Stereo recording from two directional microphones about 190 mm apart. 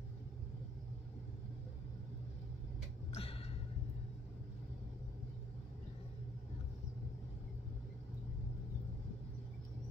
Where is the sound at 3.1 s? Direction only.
30° left (ahead or behind).